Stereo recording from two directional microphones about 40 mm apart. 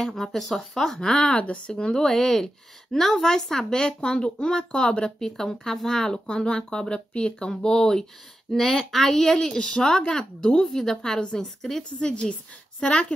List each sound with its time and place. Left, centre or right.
0.0 s a woman's voice: centre
1.3 s speech: left
1.7 s a woman's voice: centre
5.2 s a woman's voice: centre
8.5 s a woman's voice: centre
12.0 s a woman's voice: left